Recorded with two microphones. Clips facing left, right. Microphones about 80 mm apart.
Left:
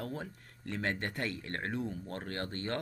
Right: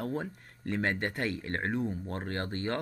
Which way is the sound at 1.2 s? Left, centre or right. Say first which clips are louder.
Right 5 dB; right.